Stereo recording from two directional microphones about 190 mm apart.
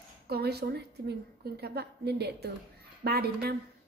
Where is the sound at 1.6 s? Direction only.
55° right (ahead or behind).